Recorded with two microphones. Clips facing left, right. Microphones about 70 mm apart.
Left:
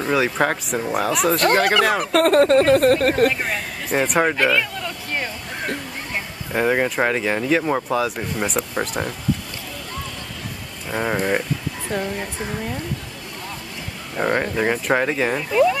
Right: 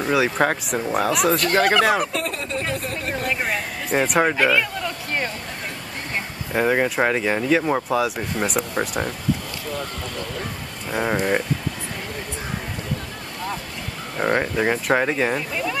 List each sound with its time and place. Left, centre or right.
0.0 s speech: centre
2.1 s speech: left
3.3 s speech: centre
6.5 s speech: centre
10.9 s speech: centre
14.2 s speech: centre